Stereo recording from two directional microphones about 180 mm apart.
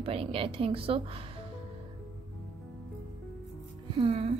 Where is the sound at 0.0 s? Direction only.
30° right (ahead or behind).